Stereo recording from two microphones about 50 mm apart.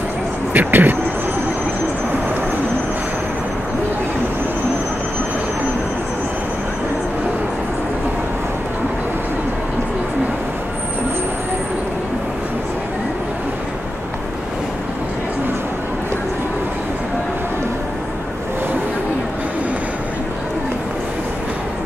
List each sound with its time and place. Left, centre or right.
0.5 s speech: right